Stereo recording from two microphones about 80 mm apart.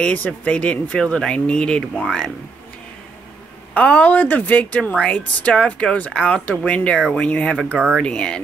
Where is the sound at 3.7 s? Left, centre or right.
Centre.